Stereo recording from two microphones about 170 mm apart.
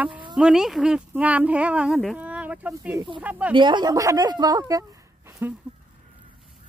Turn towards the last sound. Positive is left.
turn(degrees=-15)  # may be behind; listen again after turning